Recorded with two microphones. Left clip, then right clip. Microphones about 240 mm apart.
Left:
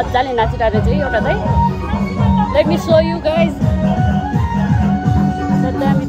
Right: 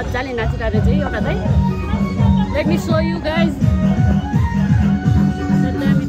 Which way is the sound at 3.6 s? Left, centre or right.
Left.